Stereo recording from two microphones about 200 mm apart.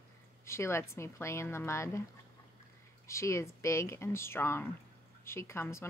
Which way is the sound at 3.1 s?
15° left (ahead or behind).